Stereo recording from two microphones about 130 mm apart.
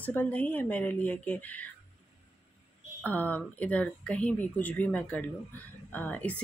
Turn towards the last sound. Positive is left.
turn(degrees=10)  # may be behind; listen again after turning